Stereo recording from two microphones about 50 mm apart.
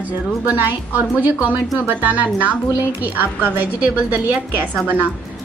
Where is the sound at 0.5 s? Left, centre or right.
Right.